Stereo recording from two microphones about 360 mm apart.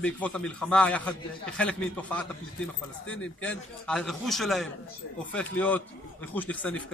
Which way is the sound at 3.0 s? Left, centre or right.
Left.